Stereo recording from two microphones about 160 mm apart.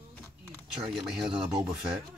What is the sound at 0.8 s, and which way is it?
Speech, centre (ahead or behind).